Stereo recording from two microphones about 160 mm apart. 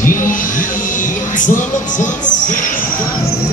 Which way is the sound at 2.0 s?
55° left (ahead or behind).